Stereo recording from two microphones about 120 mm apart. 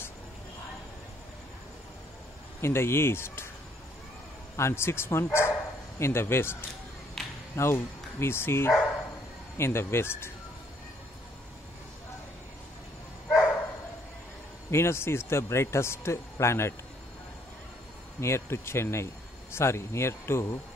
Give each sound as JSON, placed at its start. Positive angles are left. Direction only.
{"t": 2.6, "sound": "speech", "side_deg": 20}
{"t": 4.6, "sound": "speech", "side_deg": 20}
{"t": 7.2, "sound": "a sound", "side_deg": 5}
{"t": 7.5, "sound": "speech", "side_deg": 20}
{"t": 14.7, "sound": "speech", "side_deg": 20}
{"t": 18.2, "sound": "speech", "side_deg": 20}